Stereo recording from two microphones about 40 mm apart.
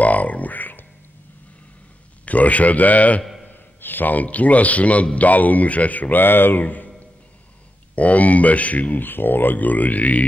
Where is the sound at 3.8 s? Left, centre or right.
Left.